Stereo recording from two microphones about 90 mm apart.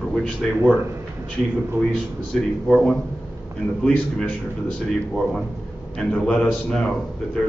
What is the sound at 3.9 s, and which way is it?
Speech, 15° left (ahead or behind).